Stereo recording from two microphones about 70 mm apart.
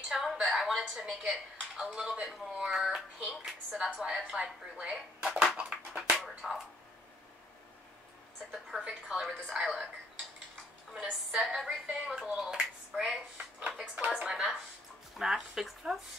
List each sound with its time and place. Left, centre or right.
0.1 s a sound: centre
0.9 s speech: centre
5.5 s music: centre
8.6 s speech: centre
10.9 s speech: centre
13.9 s speech: right
14.2 s speech: centre